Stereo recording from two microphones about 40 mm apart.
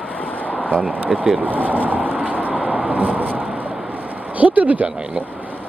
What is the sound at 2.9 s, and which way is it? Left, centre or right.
Vehicle, right.